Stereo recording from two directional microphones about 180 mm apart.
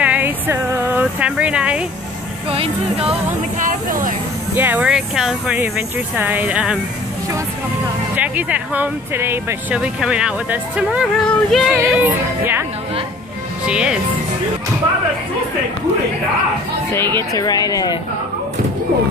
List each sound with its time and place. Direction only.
0.0 s a sound: 10° right (ahead or behind)
2.5 s speech: 30° right (ahead or behind)
3.5 s speech: 50° right (ahead or behind)
4.6 s speech: 10° right (ahead or behind)
8.2 s speech: 10° right (ahead or behind)
11.8 s speech: 10° right (ahead or behind)
13.7 s speech: 5° right (ahead or behind)
17.3 s speech: 20° left (ahead or behind)